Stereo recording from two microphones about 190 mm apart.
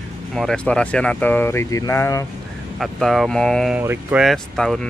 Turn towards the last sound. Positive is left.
turn(degrees=0)  # may be behind; listen again after turning